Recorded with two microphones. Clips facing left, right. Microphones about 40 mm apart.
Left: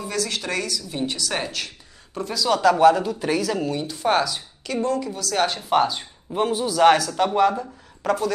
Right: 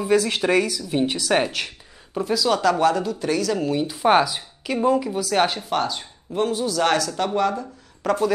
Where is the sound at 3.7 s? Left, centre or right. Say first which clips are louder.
Right 6 dB; centre.